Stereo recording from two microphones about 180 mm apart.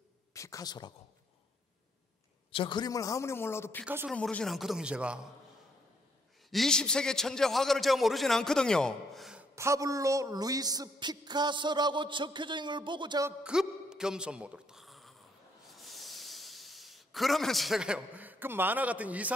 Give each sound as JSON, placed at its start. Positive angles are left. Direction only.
{"t": 0.3, "sound": "speech", "side_deg": 20}
{"t": 2.5, "sound": "speech", "side_deg": 25}
{"t": 3.8, "sound": "speech", "side_deg": -10}
{"t": 4.1, "sound": "a man's voice", "side_deg": 5}
{"t": 6.5, "sound": "a man's voice", "side_deg": 5}
{"t": 9.6, "sound": "speech", "side_deg": -15}
{"t": 13.4, "sound": "speech", "side_deg": -5}
{"t": 15.7, "sound": "a sound", "side_deg": 0}